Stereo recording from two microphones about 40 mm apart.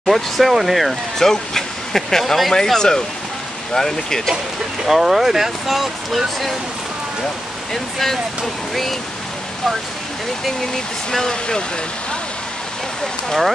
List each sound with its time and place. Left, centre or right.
0.0 s speech: centre
1.1 s speech: centre
4.8 s speech: centre
7.7 s speech: centre
11.1 s speech: centre